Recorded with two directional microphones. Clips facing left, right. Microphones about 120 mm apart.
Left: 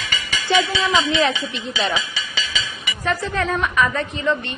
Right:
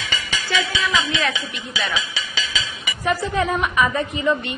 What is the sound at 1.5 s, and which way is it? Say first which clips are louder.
Speech: left 3 dB; 25° left (ahead or behind).